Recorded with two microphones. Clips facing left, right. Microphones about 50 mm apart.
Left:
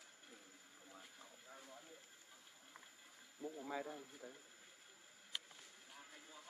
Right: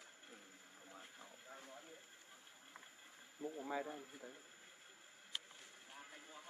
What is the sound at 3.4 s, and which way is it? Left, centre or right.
Speech, centre.